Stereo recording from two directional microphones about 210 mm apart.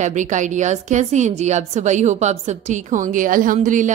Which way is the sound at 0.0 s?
35° right (ahead or behind).